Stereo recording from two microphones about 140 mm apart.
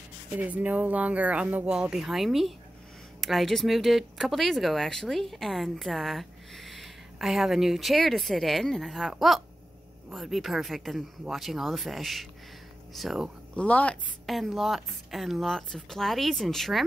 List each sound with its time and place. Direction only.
0.4 s speech: 10° right (ahead or behind)